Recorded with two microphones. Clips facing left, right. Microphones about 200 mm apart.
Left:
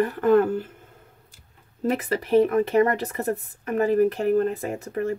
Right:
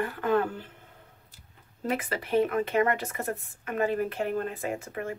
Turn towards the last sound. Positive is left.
turn(degrees=40)  # may be behind; listen again after turning